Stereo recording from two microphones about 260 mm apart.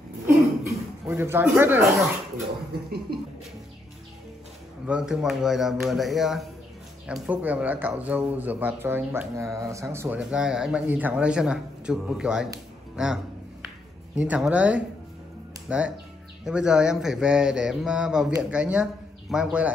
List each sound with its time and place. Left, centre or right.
1.0 s speech: centre
3.1 s speech: right
4.8 s a man's voice: centre